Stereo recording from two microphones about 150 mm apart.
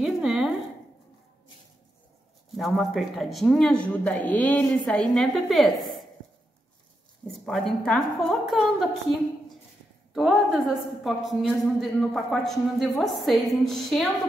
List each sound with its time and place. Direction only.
0.0 s a sound: 5° right (ahead or behind)
2.5 s a woman's voice: centre (ahead or behind)
7.2 s a woman's voice: centre (ahead or behind)